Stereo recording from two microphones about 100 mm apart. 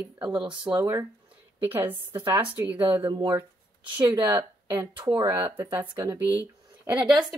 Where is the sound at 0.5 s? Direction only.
10° right (ahead or behind).